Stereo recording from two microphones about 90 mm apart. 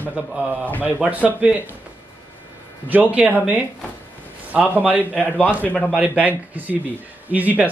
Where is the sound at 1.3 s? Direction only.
15° right (ahead or behind).